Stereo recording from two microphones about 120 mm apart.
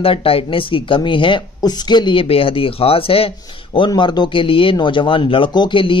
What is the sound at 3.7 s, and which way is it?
Speech, 40° left (ahead or behind).